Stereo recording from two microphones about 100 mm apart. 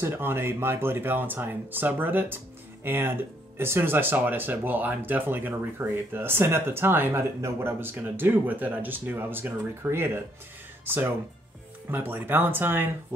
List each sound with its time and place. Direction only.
0.0 s speech: 25° right (ahead or behind)